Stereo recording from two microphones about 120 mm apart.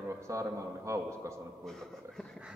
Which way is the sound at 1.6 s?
5° left (ahead or behind).